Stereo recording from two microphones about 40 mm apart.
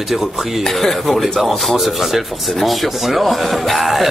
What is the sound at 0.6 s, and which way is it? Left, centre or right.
Speech, centre.